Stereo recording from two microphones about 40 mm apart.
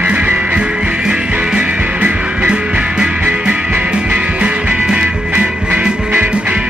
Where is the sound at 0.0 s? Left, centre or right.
Right.